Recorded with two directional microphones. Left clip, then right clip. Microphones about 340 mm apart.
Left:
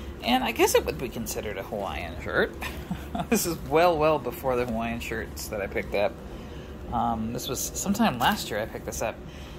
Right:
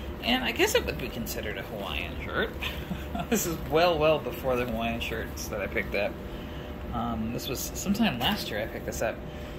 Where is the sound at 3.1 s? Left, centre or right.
Centre.